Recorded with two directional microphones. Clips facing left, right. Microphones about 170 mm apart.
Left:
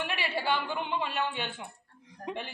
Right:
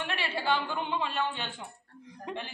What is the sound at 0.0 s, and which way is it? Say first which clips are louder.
A woman's voice: left 1 dB; 10° left (ahead or behind).